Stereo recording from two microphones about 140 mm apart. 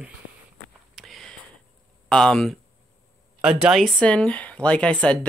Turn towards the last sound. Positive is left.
turn(degrees=10)  # may be behind; listen again after turning